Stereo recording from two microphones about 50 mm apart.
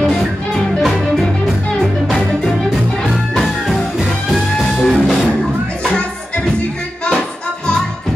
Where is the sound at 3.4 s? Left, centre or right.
Centre.